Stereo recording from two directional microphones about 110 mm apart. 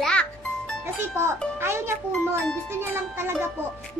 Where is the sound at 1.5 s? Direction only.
20° right (ahead or behind).